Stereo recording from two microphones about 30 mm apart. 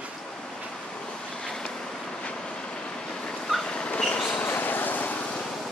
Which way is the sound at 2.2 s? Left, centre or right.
Left.